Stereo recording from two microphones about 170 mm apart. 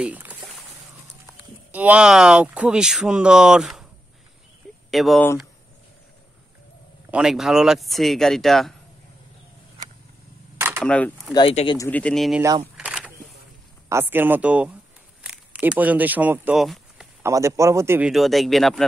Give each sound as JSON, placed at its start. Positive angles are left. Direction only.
{"t": 0.0, "sound": "speech", "side_deg": -10}
{"t": 4.9, "sound": "speech", "side_deg": 0}
{"t": 7.1, "sound": "speech", "side_deg": -5}
{"t": 10.8, "sound": "speech", "side_deg": 5}
{"t": 11.3, "sound": "speech", "side_deg": 30}
{"t": 11.9, "sound": "speech", "side_deg": 5}
{"t": 12.4, "sound": "speech", "side_deg": -20}
{"t": 12.7, "sound": "a sound", "side_deg": -5}
{"t": 13.8, "sound": "speech", "side_deg": -15}
{"t": 16.6, "sound": "a sound", "side_deg": 0}
{"t": 17.2, "sound": "speech", "side_deg": -15}
{"t": 18.1, "sound": "speech", "side_deg": 0}